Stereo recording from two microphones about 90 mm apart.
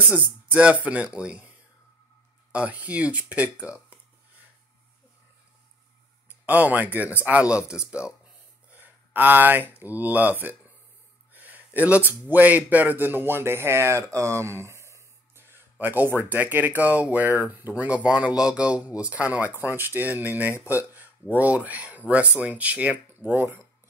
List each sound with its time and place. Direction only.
0.1 s speech: 15° right (ahead or behind)
2.5 s speech: 15° right (ahead or behind)
6.4 s speech: 15° right (ahead or behind)
11.3 s a sound: 20° right (ahead or behind)
12.1 s speech: 20° right (ahead or behind)